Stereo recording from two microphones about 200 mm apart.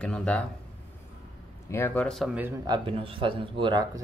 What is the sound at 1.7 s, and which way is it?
Speech, 10° left (ahead or behind).